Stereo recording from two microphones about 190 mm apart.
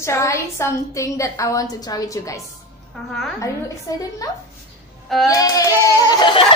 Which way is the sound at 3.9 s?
15° left (ahead or behind).